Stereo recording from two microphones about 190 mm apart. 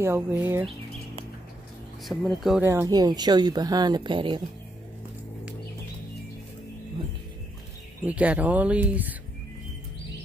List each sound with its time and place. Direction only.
0.0 s speech: 10° right (ahead or behind)
2.0 s speech: centre (ahead or behind)
2.6 s speech: 15° right (ahead or behind)
8.0 s speech: 5° right (ahead or behind)